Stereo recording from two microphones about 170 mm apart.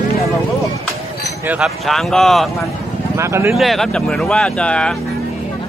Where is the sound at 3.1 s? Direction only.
15° right (ahead or behind).